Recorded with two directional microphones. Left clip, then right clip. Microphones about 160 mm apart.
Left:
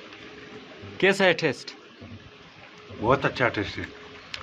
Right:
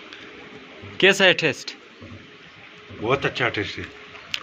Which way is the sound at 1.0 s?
5° left (ahead or behind).